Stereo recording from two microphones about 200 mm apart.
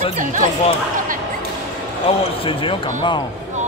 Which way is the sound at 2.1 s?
30° left (ahead or behind).